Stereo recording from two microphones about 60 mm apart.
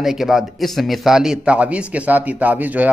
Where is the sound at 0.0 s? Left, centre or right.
Centre.